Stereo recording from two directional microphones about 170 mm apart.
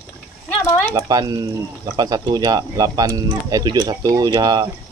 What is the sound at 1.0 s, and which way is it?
Speech, 20° right (ahead or behind).